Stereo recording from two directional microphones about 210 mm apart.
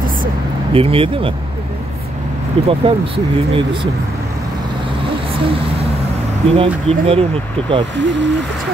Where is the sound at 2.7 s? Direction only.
25° right (ahead or behind).